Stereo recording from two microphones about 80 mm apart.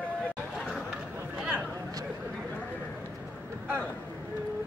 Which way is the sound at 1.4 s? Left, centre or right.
Centre.